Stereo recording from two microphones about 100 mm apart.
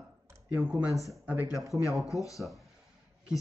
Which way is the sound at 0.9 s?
Centre (ahead or behind).